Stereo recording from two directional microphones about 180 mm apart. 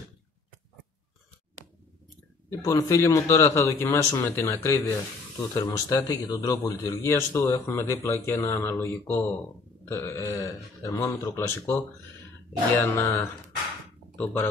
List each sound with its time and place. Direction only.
2.6 s speech: 15° left (ahead or behind)
12.9 s speech: 15° left (ahead or behind)